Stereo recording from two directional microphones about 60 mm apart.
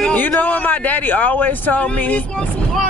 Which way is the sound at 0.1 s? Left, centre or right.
Left.